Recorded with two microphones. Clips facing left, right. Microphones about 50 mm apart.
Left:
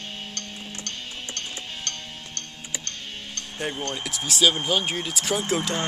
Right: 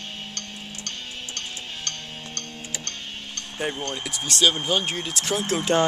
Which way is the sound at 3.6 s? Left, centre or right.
Centre.